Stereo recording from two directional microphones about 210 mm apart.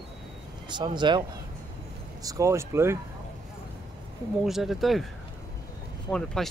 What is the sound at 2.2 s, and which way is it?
Speech, 15° right (ahead or behind).